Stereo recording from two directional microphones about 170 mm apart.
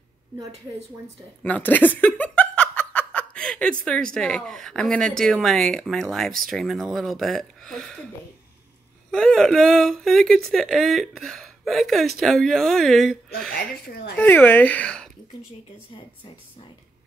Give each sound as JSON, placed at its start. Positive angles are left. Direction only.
{"t": 0.5, "sound": "speech", "side_deg": -40}
{"t": 1.4, "sound": "speech", "side_deg": 10}
{"t": 9.1, "sound": "speech", "side_deg": 0}
{"t": 13.5, "sound": "speech", "side_deg": 65}
{"t": 14.1, "sound": "speech", "side_deg": 10}